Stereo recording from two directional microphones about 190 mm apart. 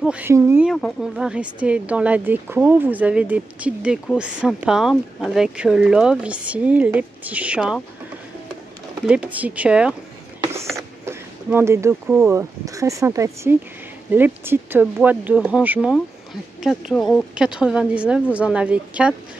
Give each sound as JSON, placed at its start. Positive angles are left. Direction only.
{"t": 0.0, "sound": "speech", "side_deg": -10}
{"t": 0.7, "sound": "speech", "side_deg": 0}
{"t": 9.0, "sound": "speech", "side_deg": -5}
{"t": 10.4, "sound": "a sound", "side_deg": -15}
{"t": 12.2, "sound": "speech", "side_deg": -15}